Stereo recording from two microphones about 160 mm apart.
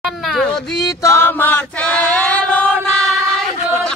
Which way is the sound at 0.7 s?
20° left (ahead or behind).